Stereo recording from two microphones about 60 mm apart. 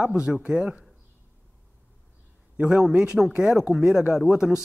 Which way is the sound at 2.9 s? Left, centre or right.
Centre.